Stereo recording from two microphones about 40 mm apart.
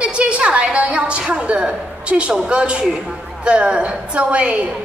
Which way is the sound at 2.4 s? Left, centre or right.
Right.